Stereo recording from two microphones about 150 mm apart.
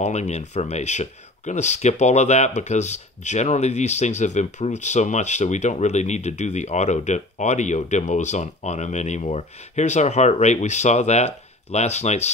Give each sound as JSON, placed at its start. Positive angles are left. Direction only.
{"t": 0.0, "sound": "speech", "side_deg": 50}